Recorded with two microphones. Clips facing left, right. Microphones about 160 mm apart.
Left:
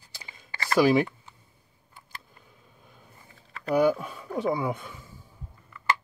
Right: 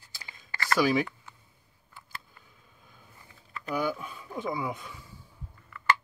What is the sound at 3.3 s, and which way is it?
Speech, 40° left (ahead or behind).